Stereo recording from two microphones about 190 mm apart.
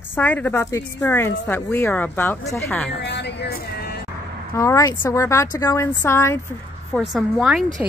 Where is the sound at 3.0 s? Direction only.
60° left (ahead or behind).